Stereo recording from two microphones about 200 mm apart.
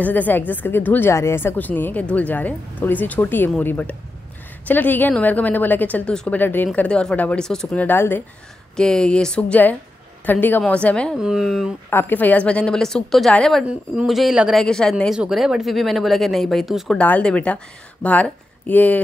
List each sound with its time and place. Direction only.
0.0 s a woman's voice: 10° left (ahead or behind)
11.9 s a woman's voice: 10° left (ahead or behind)